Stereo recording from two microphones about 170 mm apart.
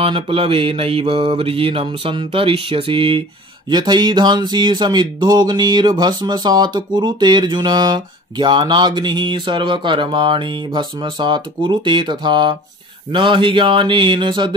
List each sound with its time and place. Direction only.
0.0 s mantra: 30° right (ahead or behind)